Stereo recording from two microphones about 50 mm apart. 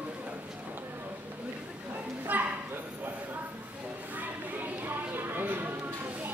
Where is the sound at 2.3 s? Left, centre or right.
Right.